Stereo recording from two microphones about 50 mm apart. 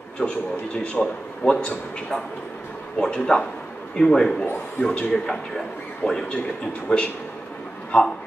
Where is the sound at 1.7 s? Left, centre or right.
Left.